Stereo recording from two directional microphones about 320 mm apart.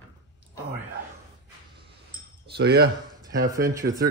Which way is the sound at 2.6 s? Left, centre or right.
Right.